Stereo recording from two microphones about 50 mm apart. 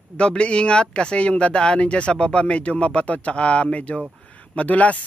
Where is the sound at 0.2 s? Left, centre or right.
Left.